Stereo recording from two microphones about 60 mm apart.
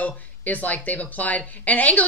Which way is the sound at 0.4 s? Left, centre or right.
Left.